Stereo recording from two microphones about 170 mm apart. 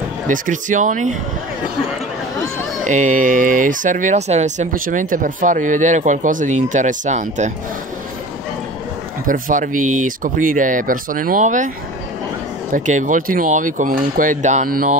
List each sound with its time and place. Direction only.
0.3 s speech: 50° right (ahead or behind)
2.9 s speech: 45° right (ahead or behind)
9.3 s speech: 50° right (ahead or behind)
12.7 s speech: 45° right (ahead or behind)